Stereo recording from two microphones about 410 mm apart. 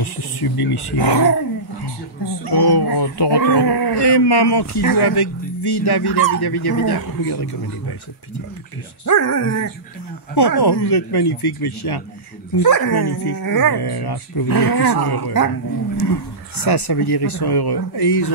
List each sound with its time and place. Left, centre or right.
0.0 s speech: left
2.4 s speech: left
9.0 s speech: left
10.3 s speech: left
12.6 s speech: left
16.5 s speech: left